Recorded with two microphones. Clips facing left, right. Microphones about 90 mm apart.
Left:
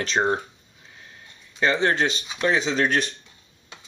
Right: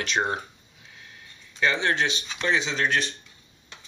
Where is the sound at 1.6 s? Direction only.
35° left (ahead or behind).